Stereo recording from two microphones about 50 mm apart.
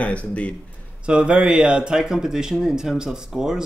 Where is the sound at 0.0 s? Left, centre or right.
Left.